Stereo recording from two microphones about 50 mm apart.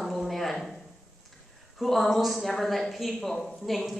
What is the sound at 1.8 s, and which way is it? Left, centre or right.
A woman's voice, centre.